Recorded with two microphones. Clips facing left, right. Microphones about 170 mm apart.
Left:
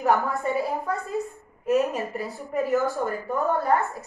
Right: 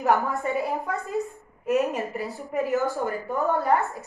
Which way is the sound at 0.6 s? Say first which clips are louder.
Left 1 dB; 20° right (ahead or behind).